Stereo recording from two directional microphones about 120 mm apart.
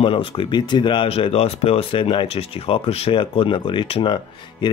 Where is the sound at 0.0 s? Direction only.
50° left (ahead or behind).